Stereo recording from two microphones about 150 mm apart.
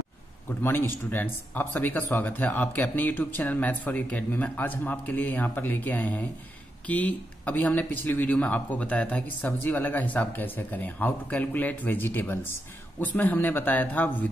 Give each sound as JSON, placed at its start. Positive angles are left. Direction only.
{"t": 0.5, "sound": "speech", "side_deg": 15}